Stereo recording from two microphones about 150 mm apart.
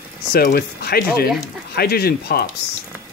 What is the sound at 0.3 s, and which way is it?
Speech, 85° left.